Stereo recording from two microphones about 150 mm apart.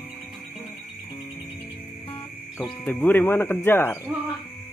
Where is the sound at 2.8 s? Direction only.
10° left (ahead or behind).